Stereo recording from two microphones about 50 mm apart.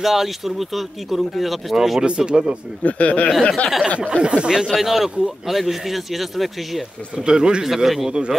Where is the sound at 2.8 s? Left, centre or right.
Left.